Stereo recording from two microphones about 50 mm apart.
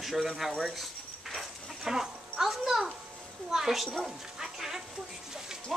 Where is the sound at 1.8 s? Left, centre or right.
Centre.